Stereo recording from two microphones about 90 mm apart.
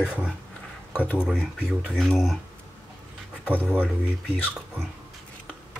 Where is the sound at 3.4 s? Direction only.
20° right (ahead or behind).